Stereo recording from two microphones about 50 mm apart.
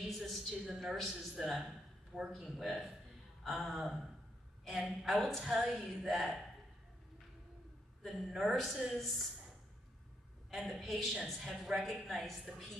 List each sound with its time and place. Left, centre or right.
0.1 s a woman's voice: centre
5.4 s a woman's voice: centre
6.0 s a woman's voice: centre
8.0 s a woman's voice: centre
10.5 s a woman's voice: centre